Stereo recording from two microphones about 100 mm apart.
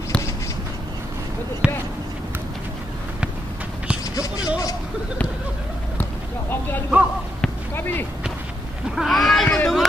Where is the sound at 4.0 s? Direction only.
35° left (ahead or behind).